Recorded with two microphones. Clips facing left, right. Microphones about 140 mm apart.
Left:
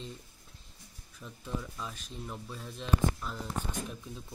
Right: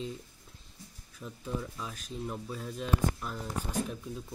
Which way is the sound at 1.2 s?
10° right (ahead or behind).